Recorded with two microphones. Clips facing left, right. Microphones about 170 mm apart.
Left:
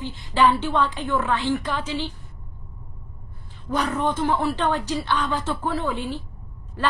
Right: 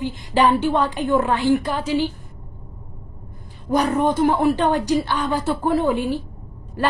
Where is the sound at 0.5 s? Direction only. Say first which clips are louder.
Right 4 dB; 10° right (ahead or behind).